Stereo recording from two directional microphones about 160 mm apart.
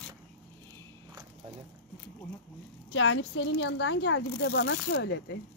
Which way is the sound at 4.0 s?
90° left.